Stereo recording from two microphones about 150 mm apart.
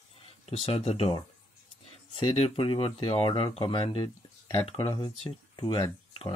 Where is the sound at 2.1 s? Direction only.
35° left (ahead or behind).